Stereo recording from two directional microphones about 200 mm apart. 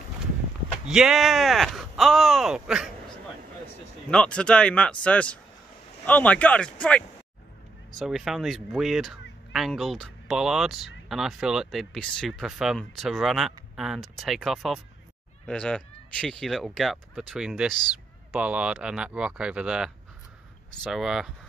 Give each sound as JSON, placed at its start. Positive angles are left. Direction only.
{"t": 0.8, "sound": "speech", "side_deg": -5}
{"t": 4.1, "sound": "speech", "side_deg": 5}